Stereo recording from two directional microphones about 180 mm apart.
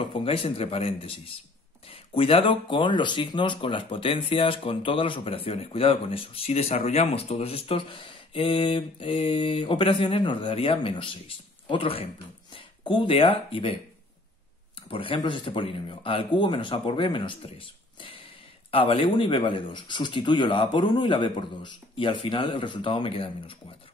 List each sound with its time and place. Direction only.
0.0 s speech: 30° left (ahead or behind)
14.9 s speech: 30° left (ahead or behind)